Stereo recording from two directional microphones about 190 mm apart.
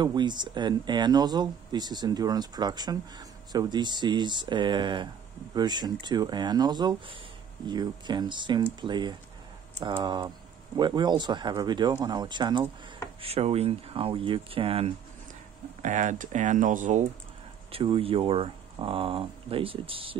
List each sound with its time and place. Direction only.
0.0 s speech: 25° right (ahead or behind)
15.8 s speech: 40° right (ahead or behind)
17.6 s speech: 30° right (ahead or behind)